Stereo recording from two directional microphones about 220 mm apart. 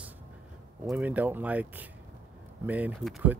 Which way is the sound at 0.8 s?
10° right (ahead or behind).